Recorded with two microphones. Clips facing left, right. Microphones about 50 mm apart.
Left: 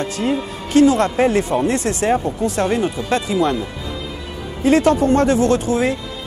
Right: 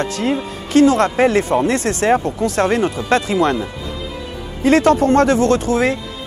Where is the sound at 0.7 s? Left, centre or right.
Right.